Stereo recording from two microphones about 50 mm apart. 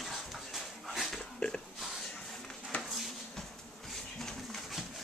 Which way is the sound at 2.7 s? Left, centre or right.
Left.